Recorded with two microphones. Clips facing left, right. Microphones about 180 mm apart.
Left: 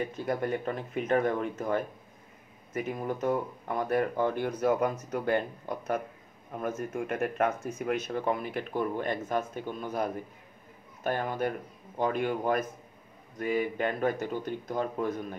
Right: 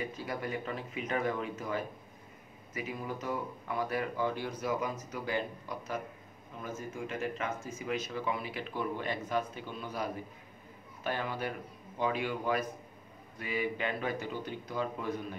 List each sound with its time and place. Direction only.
0.0 s speech: 50° left (ahead or behind)